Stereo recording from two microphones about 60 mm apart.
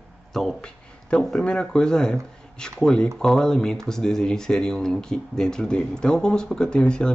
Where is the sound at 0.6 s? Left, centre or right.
Centre.